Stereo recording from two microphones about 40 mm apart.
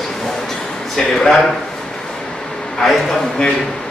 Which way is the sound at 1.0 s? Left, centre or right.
Centre.